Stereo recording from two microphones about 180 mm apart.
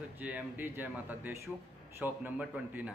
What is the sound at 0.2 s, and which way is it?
Speech, 10° right (ahead or behind).